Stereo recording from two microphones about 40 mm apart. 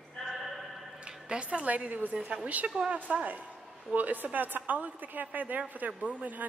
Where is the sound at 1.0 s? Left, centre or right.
Right.